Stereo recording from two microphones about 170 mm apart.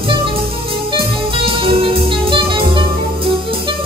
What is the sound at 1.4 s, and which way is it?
Music, 30° right (ahead or behind).